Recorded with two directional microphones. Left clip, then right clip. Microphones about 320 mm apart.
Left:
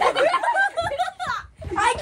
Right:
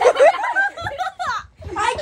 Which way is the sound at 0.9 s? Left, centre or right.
Centre.